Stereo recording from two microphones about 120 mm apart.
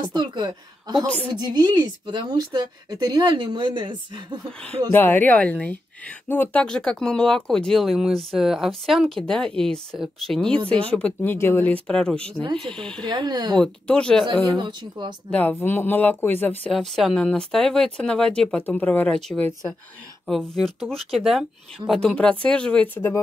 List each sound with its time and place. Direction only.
0.0 s a woman's voice: 35° right (ahead or behind)
4.9 s speech: 15° left (ahead or behind)
6.6 s speech: 5° left (ahead or behind)
13.0 s a woman's voice: 40° right (ahead or behind)
13.6 s speech: 10° left (ahead or behind)
14.6 s a woman's voice: 40° right (ahead or behind)
15.6 s speech: 15° left (ahead or behind)
16.7 s speech: 5° left (ahead or behind); by 23.2 s 20° left (ahead or behind)